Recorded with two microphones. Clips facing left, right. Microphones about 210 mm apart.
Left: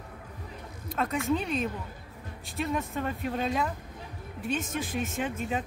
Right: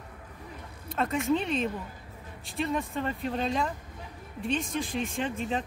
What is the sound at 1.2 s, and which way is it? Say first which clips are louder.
Speech: right 2 dB; centre (ahead or behind).